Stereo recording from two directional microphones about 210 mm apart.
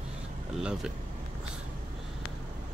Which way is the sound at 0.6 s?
5° right (ahead or behind).